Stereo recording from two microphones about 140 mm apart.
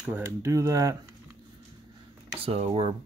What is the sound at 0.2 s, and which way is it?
Speech, 20° right (ahead or behind).